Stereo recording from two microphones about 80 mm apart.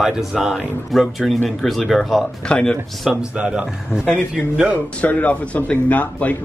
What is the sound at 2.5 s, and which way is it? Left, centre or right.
Speech, centre.